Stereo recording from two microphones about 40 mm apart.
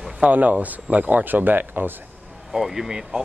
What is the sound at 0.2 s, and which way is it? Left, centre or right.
Speech, right.